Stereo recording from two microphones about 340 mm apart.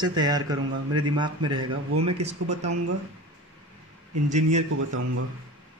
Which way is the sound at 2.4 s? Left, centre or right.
Right.